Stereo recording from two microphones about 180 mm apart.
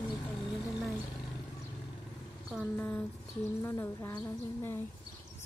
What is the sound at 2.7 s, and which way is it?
A woman's voice, 10° left (ahead or behind).